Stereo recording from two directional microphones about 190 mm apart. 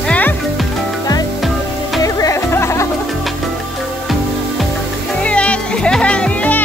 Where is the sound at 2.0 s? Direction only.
15° left (ahead or behind).